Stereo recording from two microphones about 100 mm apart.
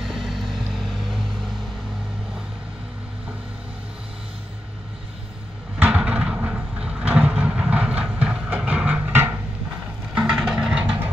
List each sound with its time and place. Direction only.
0.0 s vehicle: centre (ahead or behind)
5.8 s vehicle: 15° right (ahead or behind)
10.1 s vehicle: 5° right (ahead or behind)